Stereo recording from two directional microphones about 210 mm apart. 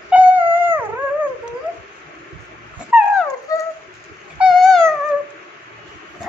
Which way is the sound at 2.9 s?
5° right (ahead or behind).